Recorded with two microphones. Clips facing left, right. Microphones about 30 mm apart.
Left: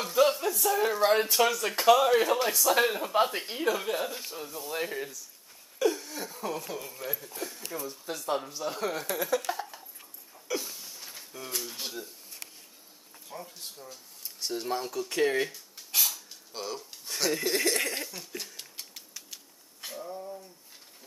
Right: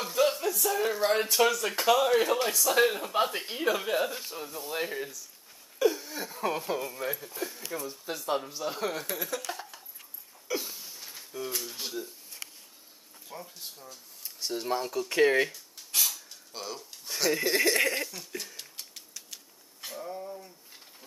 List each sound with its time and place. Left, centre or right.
0.0 s speech: centre
5.8 s a sound: centre
6.4 s speech: right
6.9 s speech: centre
9.5 s dog: centre
10.5 s a sound: centre
13.3 s speech: centre
15.5 s cutlery: centre
20.0 s a sound: centre